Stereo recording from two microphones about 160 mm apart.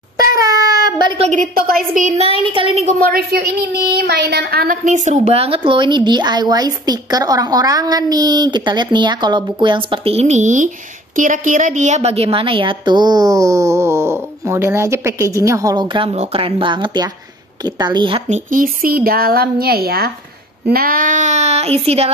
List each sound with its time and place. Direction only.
0.3 s a sound: 20° right (ahead or behind)
1.2 s a woman's voice: 50° right (ahead or behind)
3.0 s a woman's voice: 70° right (ahead or behind); by 18.2 s 30° right (ahead or behind)
18.3 s a woman's voice: 60° right (ahead or behind); by 22.1 s 40° right (ahead or behind)